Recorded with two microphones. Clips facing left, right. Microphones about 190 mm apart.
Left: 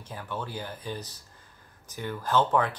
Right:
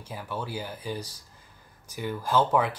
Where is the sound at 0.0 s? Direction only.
10° right (ahead or behind).